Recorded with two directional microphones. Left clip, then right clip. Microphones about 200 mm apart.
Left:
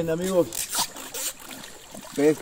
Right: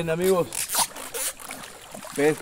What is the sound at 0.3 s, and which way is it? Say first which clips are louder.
Zipper: even; centre (ahead or behind).